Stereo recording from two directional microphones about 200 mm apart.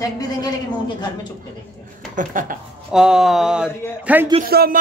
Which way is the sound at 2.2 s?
40° right (ahead or behind).